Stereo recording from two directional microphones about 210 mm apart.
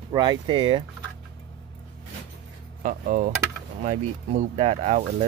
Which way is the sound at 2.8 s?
40° right (ahead or behind).